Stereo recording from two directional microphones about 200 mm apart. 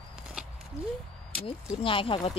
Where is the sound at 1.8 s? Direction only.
25° left (ahead or behind).